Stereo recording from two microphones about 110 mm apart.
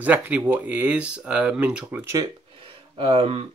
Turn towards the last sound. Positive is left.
turn(degrees=-55)  # may be behind; listen again after turning